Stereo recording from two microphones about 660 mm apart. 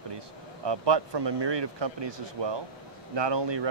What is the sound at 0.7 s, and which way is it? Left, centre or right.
Speech, right.